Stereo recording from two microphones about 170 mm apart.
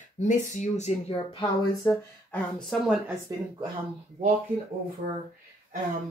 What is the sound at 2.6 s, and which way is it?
Speech, centre (ahead or behind).